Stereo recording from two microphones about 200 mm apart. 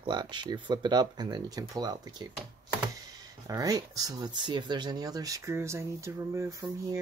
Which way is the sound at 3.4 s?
15° right (ahead or behind).